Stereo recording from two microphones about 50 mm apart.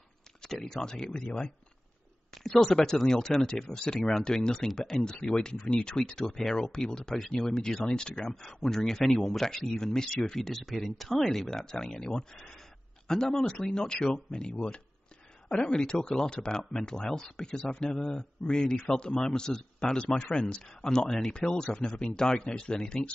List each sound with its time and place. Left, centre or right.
0.4 s speech: centre
2.6 s speech: centre